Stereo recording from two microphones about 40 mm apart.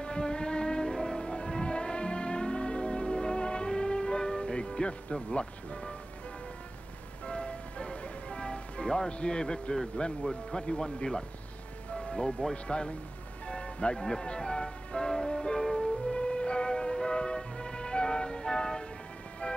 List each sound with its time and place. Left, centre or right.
0.0 s music: left
7.2 s music: left
10.0 s speech: left
13.5 s music: left